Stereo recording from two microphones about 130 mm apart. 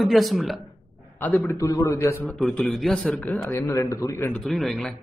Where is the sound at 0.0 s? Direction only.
Centre (ahead or behind).